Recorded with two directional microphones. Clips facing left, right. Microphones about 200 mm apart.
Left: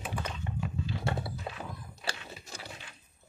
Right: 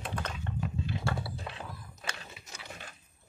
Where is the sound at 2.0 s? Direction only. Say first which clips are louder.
Left 3 dB; 35° left (ahead or behind).